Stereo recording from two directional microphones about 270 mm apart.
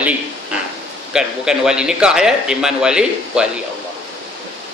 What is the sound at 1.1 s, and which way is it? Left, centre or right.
A man's voice, centre.